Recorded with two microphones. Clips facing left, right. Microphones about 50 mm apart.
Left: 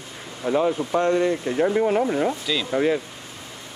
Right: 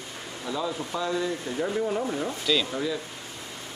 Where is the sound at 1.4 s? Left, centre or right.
Left.